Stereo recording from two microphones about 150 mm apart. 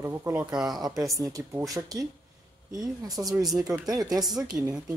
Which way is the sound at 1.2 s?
20° right (ahead or behind).